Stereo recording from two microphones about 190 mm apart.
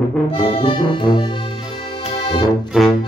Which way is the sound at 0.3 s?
30° left (ahead or behind).